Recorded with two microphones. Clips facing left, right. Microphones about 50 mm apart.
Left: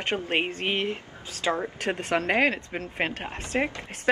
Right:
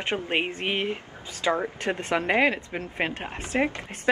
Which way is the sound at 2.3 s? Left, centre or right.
Right.